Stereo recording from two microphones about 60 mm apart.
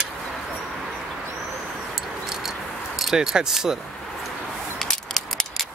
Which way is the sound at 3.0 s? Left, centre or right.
Centre.